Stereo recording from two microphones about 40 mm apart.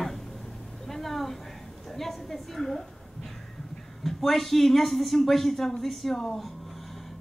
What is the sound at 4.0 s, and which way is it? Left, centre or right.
Speech, centre.